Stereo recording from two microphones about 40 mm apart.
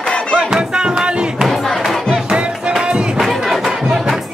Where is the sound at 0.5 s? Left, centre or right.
Right.